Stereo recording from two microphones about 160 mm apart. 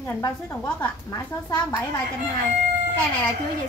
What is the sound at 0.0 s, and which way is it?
A woman's voice, 15° left (ahead or behind).